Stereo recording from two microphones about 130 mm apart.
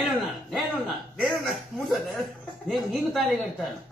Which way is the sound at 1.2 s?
Centre (ahead or behind).